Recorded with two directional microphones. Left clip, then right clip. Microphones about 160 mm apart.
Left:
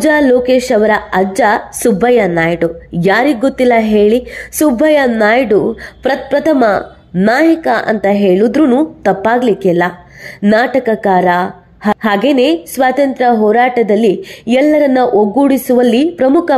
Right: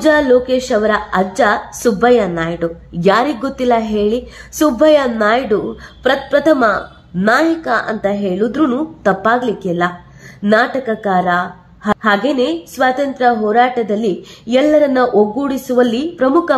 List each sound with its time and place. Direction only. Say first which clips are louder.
0.0 s a woman's voice: left 2 dB; 30° left (ahead or behind)